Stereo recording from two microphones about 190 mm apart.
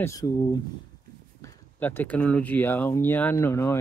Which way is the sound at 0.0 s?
20° left (ahead or behind).